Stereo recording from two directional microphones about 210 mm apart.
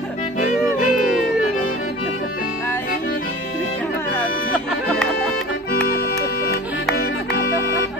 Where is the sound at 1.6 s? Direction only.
40° left (ahead or behind).